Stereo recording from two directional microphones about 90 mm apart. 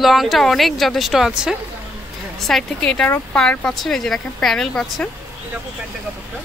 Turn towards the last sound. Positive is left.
turn(degrees=5)  # may be behind; listen again after turning